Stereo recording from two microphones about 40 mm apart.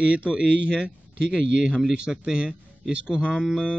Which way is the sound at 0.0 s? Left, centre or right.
Right.